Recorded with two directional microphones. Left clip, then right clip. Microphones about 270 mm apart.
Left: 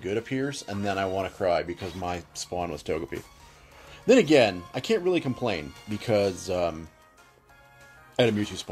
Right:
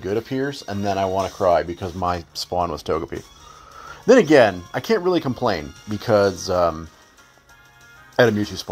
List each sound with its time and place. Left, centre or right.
0.0 s speech: right
4.1 s speech: centre
8.3 s speech: centre